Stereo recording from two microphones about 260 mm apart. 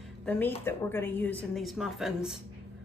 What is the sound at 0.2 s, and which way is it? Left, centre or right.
A woman's voice, centre.